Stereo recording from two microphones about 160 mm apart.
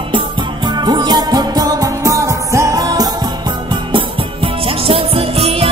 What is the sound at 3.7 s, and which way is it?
Music, 30° right (ahead or behind).